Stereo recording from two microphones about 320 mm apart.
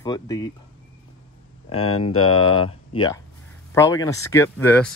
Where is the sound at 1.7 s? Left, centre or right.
Centre.